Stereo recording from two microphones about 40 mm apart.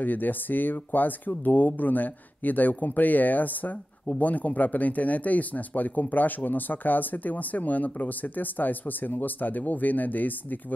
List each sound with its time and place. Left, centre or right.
0.0 s speech: left